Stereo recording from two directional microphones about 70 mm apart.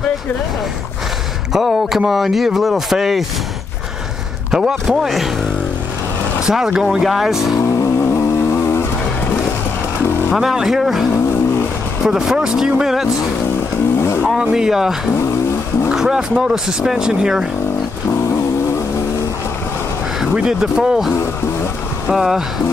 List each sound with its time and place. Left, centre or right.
1.5 s speech: centre
4.5 s speech: centre
6.4 s speech: centre
7.7 s vehicle: left
10.3 s speech: centre
14.2 s speech: centre
20.3 s speech: centre